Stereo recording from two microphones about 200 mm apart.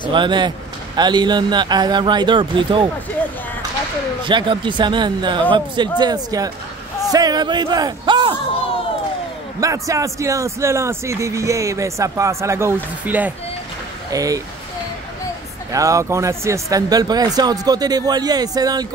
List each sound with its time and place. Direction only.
0.1 s speech: 25° right (ahead or behind)
4.3 s speech: 25° right (ahead or behind)
9.6 s a man's voice: 15° right (ahead or behind)
15.7 s speech: 15° right (ahead or behind)